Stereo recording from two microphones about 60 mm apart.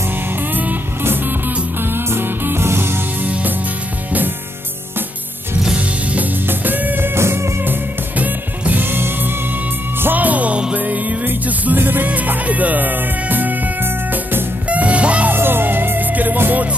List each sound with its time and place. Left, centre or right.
1.0 s music: right
5.8 s music: right
7.2 s music: right
14.7 s music: right
15.3 s music: right